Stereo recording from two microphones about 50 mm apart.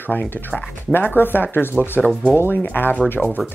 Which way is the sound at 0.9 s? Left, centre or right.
Left.